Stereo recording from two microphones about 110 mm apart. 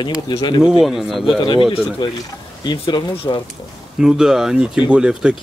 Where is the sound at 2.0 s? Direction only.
45° left (ahead or behind).